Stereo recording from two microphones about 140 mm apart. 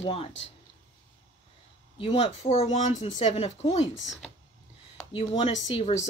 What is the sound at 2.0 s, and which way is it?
Speech, 40° left (ahead or behind).